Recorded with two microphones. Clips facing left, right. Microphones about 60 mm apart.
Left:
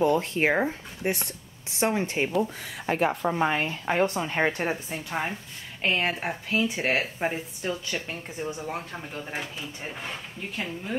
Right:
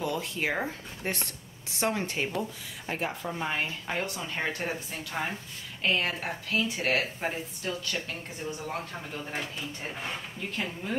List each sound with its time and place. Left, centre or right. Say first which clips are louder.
0.0 s a woman's voice: left 8 dB; left
1.0 s speech: left 5 dB; centre
1.8 s speech: left 4 dB; left
2.9 s speech: left 8 dB; left
3.5 s a woman's voice: left 6 dB; left; by 11.0 s centre